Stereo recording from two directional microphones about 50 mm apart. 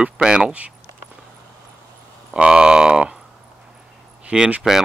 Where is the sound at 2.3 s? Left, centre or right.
Centre.